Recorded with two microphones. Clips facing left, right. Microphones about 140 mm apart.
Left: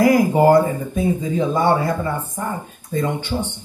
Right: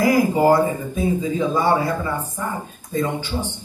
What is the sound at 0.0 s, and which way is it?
Speech, 55° left (ahead or behind).